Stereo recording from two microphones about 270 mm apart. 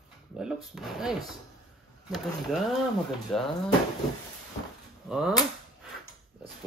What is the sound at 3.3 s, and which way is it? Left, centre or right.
Speech, centre.